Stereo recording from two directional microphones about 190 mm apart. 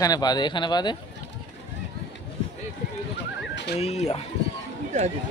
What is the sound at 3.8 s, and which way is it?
Speech, 35° left (ahead or behind).